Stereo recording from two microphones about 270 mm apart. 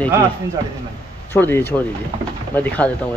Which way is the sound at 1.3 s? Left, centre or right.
Centre.